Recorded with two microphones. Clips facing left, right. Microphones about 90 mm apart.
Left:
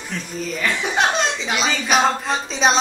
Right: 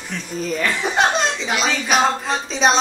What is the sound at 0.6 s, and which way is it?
Speech, centre (ahead or behind).